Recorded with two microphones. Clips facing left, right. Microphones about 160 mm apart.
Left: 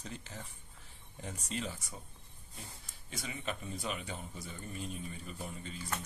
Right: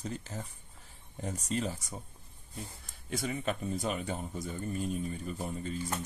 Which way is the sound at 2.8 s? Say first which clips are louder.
Right 10 dB; 55° right (ahead or behind).